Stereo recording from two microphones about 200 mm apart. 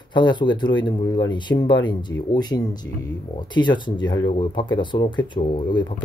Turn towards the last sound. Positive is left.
turn(degrees=25)  # may be behind; listen again after turning